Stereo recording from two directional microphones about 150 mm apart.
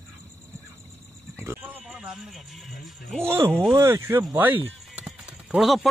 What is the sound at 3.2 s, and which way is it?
Speech, 15° right (ahead or behind).